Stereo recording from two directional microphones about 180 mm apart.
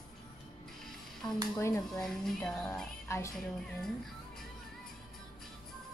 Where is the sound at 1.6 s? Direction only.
15° left (ahead or behind).